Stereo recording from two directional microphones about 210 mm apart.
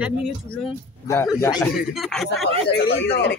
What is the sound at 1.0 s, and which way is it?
Speech, 10° left (ahead or behind).